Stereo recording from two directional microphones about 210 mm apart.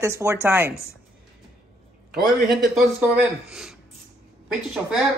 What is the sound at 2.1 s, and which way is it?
A man's voice, centre (ahead or behind).